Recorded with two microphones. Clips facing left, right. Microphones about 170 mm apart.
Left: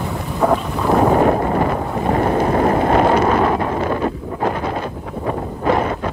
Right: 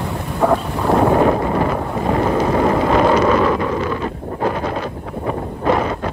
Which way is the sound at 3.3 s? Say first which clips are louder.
Right 1 dB; 35° left (ahead or behind).